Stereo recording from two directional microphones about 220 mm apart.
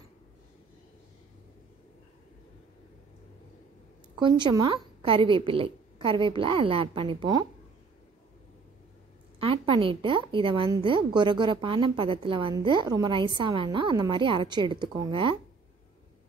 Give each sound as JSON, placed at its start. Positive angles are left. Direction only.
{"t": 4.2, "sound": "a woman's voice", "side_deg": -20}
{"t": 9.4, "sound": "a woman's voice", "side_deg": -25}